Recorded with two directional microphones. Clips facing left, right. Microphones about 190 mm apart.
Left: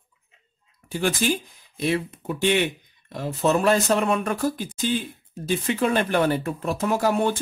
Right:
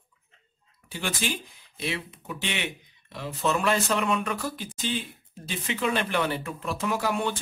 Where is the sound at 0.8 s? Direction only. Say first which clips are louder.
Left 8 dB; 45° left (ahead or behind).